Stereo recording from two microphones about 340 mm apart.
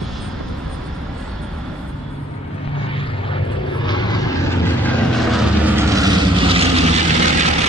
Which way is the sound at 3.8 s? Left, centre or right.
Centre.